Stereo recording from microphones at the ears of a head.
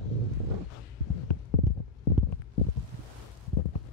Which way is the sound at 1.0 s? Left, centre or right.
Left.